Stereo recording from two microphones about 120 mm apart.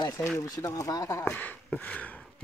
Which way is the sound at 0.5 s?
30° left (ahead or behind).